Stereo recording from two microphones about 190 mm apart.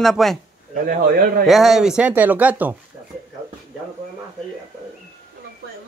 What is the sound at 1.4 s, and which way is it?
Speech, centre (ahead or behind).